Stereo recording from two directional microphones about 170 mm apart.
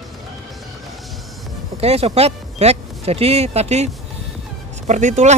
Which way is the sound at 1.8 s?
40° right (ahead or behind).